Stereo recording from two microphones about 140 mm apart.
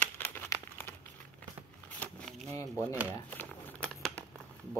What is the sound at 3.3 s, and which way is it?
Crumpling, 5° left (ahead or behind).